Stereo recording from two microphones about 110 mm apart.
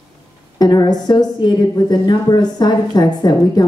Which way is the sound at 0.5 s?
40° left (ahead or behind).